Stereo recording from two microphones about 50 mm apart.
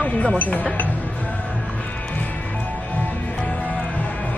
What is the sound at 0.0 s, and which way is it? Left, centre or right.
Speech, left.